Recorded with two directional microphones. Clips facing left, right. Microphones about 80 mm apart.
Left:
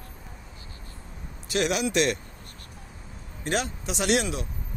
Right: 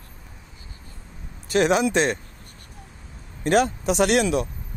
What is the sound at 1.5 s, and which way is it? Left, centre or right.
Speech, right.